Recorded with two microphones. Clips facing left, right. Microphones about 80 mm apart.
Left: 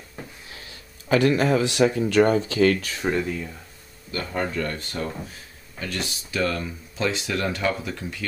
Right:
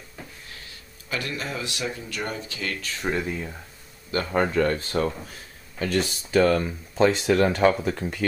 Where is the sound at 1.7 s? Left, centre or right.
Left.